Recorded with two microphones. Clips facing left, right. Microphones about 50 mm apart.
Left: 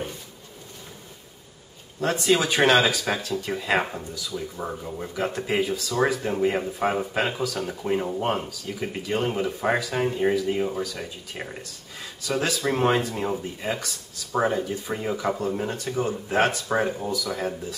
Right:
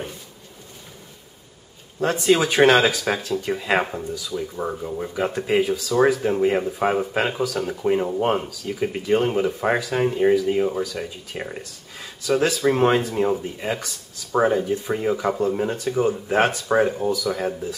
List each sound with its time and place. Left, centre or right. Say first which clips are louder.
2.0 s speech: right 3 dB; centre